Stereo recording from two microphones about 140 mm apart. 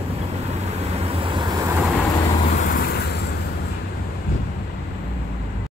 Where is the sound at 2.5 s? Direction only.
70° left (ahead or behind).